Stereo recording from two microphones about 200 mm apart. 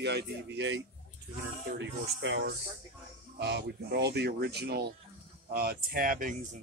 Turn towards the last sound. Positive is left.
turn(degrees=-45)  # may be behind; listen again after turning